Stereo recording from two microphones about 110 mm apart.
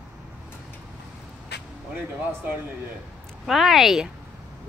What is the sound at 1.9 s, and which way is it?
Speech, 20° right (ahead or behind).